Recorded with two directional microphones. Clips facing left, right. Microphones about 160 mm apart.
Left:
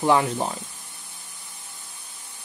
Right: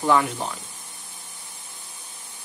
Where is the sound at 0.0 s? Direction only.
25° left (ahead or behind).